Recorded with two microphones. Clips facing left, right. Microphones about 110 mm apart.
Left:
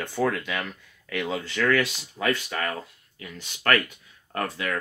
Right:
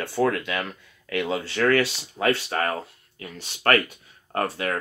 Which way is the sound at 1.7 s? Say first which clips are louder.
Right 3 dB; 30° right (ahead or behind).